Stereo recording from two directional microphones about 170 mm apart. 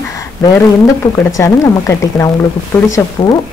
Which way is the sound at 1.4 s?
20° left (ahead or behind).